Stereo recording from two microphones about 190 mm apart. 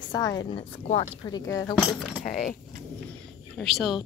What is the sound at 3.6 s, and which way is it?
Speech, centre (ahead or behind).